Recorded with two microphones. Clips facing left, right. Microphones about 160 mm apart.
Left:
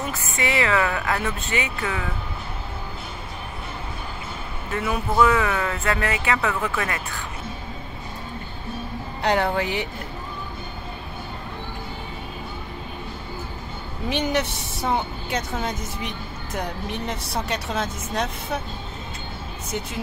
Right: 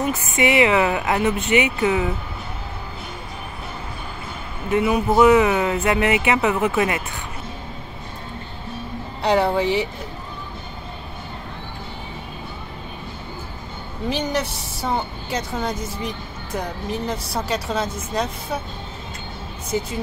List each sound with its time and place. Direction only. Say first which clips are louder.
0.1 s speech: right 6 dB; 20° right (ahead or behind)
4.6 s speech: right 7 dB; 15° right (ahead or behind)
9.2 s speech: right 3 dB; centre (ahead or behind)
14.0 s speech: even; centre (ahead or behind)